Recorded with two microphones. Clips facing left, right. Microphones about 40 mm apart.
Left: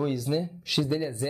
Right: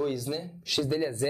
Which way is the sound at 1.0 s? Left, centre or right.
Centre.